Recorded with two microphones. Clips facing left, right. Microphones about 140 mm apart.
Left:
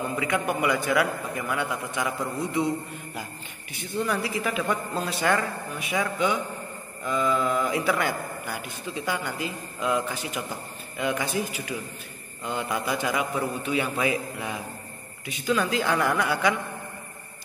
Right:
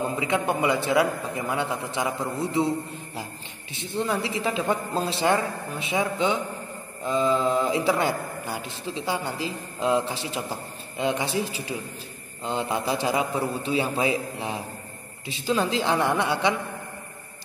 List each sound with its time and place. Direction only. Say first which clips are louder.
0.1 s a man's voice: right 1 dB; 25° right (ahead or behind)
3.7 s a man's voice: right 1 dB; 25° right (ahead or behind)